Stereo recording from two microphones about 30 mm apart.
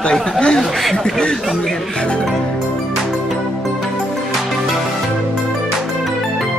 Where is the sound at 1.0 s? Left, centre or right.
Left.